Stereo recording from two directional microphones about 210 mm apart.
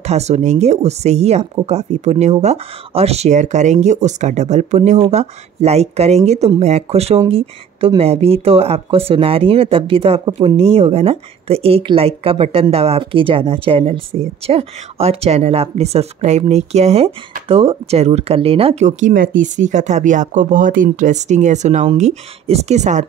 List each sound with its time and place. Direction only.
0.0 s speech: 30° right (ahead or behind)